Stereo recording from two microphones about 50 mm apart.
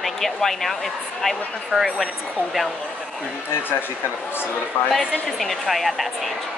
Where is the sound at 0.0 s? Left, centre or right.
Centre.